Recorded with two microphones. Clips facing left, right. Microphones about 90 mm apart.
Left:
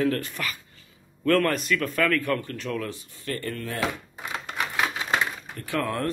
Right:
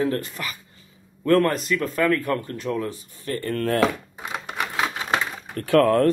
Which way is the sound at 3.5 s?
55° right (ahead or behind).